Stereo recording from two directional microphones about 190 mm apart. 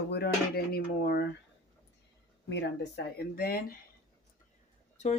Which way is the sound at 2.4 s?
65° left (ahead or behind).